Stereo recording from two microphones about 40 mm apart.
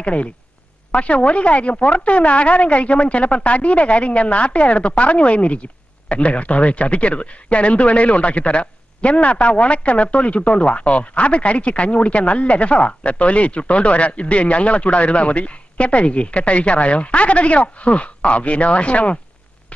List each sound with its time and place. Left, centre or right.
0.0 s speech: left